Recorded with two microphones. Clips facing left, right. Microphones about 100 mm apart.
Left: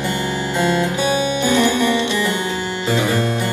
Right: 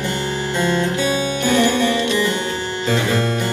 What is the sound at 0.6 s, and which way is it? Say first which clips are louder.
Music: left 1 dB; 15° left (ahead or behind).